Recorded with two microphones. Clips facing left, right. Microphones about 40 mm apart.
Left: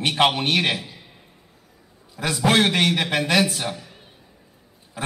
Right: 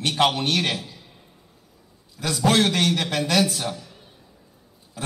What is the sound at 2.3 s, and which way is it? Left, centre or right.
A man's voice, left.